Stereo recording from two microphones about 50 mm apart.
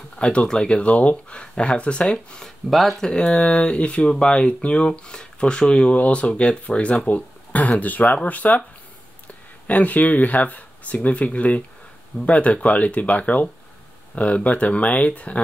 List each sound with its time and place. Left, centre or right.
0.2 s speech: left
2.0 s speech: centre
3.0 s speech: centre
7.1 s a sound: left
7.8 s speech: left
9.7 s speech: left